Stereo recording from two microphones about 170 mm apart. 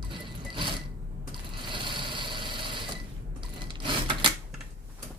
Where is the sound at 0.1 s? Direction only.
30° right (ahead or behind).